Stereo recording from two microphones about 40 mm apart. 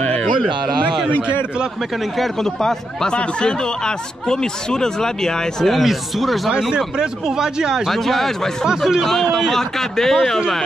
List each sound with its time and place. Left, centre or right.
0.2 s a sound: centre
2.1 s speech: centre
3.1 s speech: left
5.7 s speech: centre
7.0 s speech: centre
7.9 s speech: centre
8.6 s speech: centre
9.0 s speech: centre